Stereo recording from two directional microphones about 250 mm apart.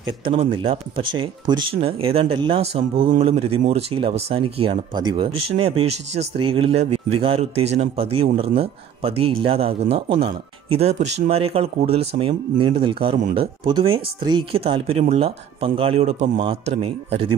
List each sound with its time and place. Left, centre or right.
0.2 s speech: right
3.0 s speech: right
3.3 s speech: right